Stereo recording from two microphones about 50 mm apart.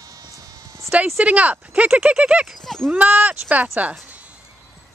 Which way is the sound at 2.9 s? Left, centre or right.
Right.